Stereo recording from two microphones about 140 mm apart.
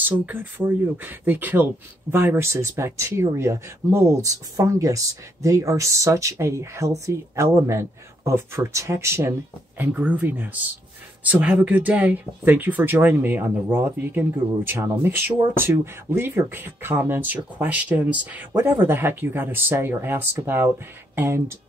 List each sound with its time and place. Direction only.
0.0 s speech: 15° right (ahead or behind)